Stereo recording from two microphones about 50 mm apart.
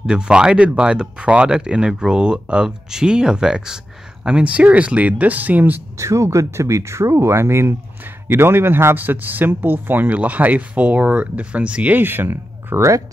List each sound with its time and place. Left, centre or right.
0.0 s speech: centre; by 5.8 s right
5.9 s speech: right
8.3 s a man's voice: right
8.9 s speech: right
10.0 s speech: right
12.0 s speech: right